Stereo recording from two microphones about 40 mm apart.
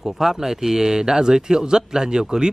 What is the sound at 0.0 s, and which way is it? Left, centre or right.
Speech, centre.